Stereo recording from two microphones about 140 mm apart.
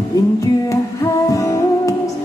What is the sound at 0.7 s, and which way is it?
Music, 25° left (ahead or behind).